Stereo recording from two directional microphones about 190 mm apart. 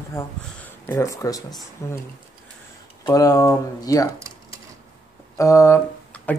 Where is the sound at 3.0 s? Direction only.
20° left (ahead or behind).